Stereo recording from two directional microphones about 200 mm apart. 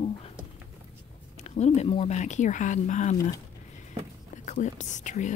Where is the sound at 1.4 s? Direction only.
35° left (ahead or behind).